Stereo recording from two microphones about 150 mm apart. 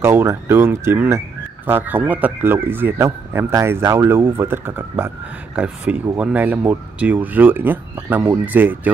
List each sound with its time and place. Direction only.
0.0 s speech: 15° right (ahead or behind)